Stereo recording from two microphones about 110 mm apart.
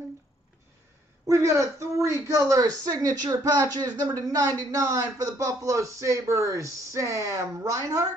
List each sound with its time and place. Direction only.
1.2 s a woman's voice: 25° right (ahead or behind)